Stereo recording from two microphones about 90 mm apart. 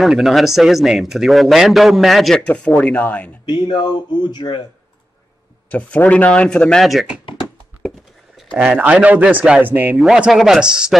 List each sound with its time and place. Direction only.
0.0 s speech: centre (ahead or behind)
2.4 s speech: 15° left (ahead or behind)
3.4 s speech: 55° left (ahead or behind)
5.7 s speech: 15° left (ahead or behind); by 7.2 s centre (ahead or behind)
8.6 s a man's voice: 15° right (ahead or behind)
9.9 s speech: 5° right (ahead or behind)